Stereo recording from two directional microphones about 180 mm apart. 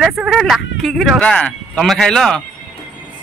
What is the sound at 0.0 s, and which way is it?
Speech, centre (ahead or behind).